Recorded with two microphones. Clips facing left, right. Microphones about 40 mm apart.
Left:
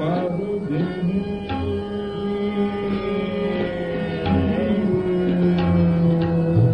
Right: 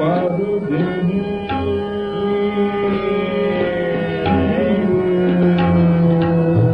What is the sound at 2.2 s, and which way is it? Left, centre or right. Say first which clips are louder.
Music: right 6 dB; right.